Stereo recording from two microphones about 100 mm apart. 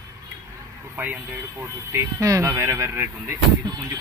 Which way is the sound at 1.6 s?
25° right (ahead or behind).